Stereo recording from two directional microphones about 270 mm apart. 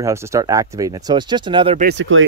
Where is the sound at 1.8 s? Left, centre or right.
Right.